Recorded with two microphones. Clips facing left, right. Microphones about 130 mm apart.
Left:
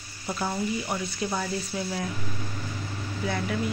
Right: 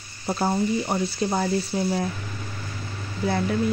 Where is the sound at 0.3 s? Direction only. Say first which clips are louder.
Right 6 dB; 35° right (ahead or behind).